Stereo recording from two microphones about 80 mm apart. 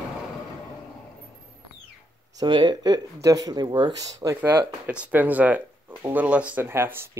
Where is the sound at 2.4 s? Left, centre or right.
Right.